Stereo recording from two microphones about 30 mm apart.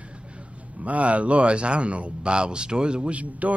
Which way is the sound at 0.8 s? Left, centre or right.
Right.